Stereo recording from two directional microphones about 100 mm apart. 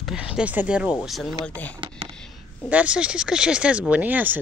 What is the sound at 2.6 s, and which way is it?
Speech, 10° right (ahead or behind).